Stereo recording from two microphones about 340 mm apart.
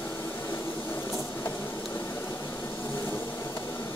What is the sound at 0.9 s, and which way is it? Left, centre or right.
Printer, centre.